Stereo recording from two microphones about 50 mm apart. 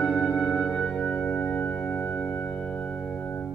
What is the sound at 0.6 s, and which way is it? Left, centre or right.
Music, left.